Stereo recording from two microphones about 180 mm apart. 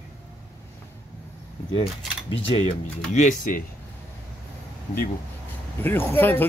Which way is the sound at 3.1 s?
45° left (ahead or behind).